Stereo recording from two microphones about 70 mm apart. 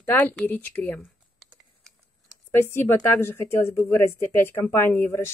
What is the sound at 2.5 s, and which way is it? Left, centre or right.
Speech, left.